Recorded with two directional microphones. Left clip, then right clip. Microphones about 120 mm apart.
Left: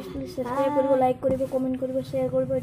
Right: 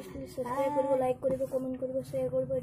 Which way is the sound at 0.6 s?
10° right (ahead or behind).